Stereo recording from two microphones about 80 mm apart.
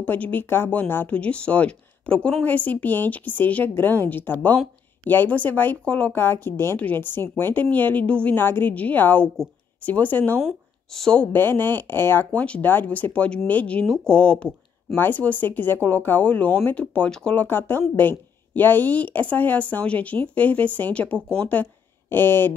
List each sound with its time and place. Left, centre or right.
0.0 s a woman's voice: left
1.1 s a woman's voice: centre
6.1 s a woman's voice: left
10.9 s speech: centre
11.3 s a woman's voice: left
15.0 s a woman's voice: left
17.5 s a woman's voice: left